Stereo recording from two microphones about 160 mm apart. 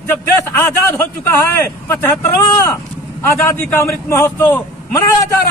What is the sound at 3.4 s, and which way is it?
A man's voice, 20° left (ahead or behind).